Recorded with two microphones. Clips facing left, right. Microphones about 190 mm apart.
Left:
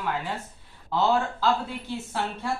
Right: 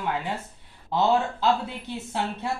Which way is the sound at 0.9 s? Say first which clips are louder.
Right 1 dB; 20° right (ahead or behind).